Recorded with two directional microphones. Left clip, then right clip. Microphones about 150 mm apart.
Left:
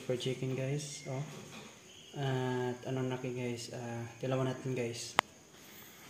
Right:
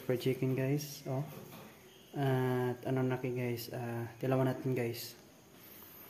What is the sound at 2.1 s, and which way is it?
Speech, 45° right (ahead or behind).